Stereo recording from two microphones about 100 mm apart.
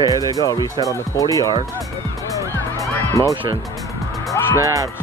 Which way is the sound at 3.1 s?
30° left (ahead or behind).